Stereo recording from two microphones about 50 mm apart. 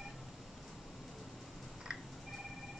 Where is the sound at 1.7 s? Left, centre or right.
Centre.